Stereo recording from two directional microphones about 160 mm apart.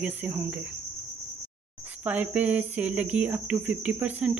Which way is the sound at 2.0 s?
10° right (ahead or behind).